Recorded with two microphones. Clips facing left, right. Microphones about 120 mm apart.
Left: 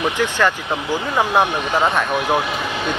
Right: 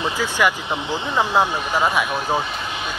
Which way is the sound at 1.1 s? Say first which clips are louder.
Left 1 dB; 15° left (ahead or behind).